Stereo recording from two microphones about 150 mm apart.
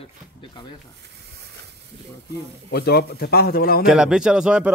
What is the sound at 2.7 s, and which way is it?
Speech, 90° left.